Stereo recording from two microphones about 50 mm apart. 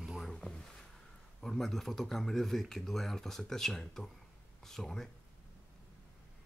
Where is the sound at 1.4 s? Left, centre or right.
Centre.